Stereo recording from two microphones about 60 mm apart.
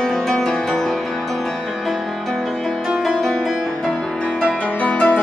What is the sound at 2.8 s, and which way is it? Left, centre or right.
Music, centre.